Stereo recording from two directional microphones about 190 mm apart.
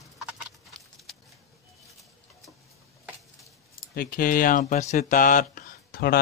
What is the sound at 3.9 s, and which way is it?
Speech, 50° left (ahead or behind).